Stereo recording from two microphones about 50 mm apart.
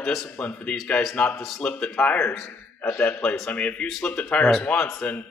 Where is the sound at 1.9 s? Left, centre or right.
Left.